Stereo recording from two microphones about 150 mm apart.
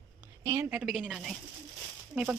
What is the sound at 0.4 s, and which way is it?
A woman's voice, 20° right (ahead or behind).